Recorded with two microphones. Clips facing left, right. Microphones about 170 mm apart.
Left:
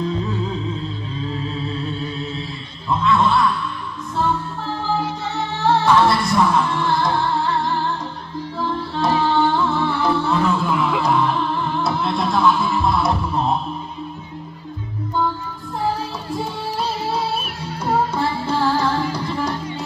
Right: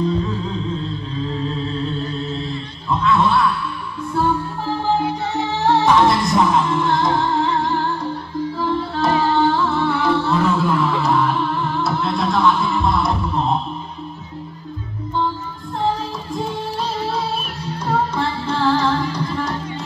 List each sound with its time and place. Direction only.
2.9 s a sound: centre (ahead or behind)
5.6 s music: 15° right (ahead or behind)
9.0 s music: centre (ahead or behind)
18.1 s music: 10° left (ahead or behind)